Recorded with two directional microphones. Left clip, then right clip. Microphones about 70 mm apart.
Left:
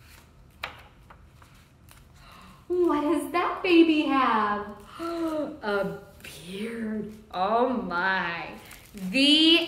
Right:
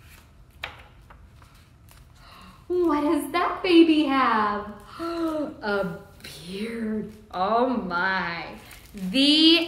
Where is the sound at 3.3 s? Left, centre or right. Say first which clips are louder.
Right 2 dB; right.